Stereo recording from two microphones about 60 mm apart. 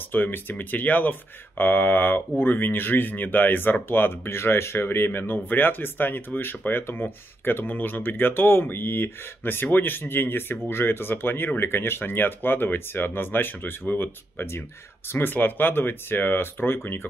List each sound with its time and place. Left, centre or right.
0.1 s speech: left